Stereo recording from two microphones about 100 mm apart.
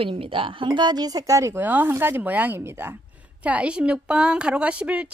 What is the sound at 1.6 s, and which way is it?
A woman's voice, 20° right (ahead or behind).